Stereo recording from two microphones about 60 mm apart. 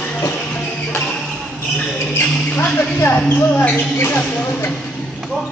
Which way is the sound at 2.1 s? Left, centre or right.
Left.